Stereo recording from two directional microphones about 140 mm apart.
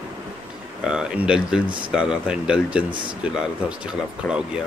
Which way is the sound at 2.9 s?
35° right (ahead or behind).